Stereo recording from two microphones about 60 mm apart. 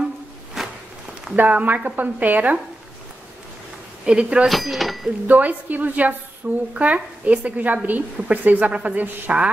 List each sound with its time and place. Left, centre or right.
0.6 s walk: centre
1.3 s a woman's voice: right
4.0 s speech: centre
4.5 s speech: centre
5.2 s a woman's voice: right